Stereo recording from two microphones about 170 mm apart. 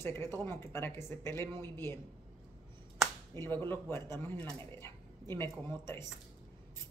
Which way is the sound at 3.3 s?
15° left (ahead or behind).